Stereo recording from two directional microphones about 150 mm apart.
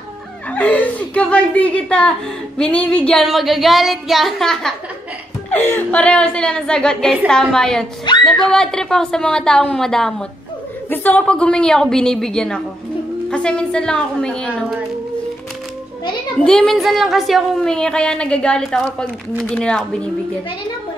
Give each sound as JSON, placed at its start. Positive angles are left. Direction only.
{"t": 0.5, "sound": "speech", "side_deg": 10}
{"t": 8.1, "sound": "speech", "side_deg": 30}
{"t": 8.5, "sound": "speech", "side_deg": 5}
{"t": 16.3, "sound": "speech", "side_deg": 5}